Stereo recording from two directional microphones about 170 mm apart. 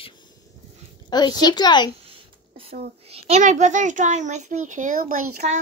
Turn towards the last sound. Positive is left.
turn(degrees=-50)  # may be behind; listen again after turning